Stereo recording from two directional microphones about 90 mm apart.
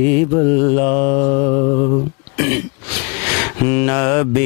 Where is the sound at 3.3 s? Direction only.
15° left (ahead or behind).